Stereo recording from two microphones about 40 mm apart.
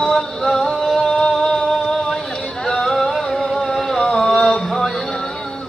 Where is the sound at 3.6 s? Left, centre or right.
Centre.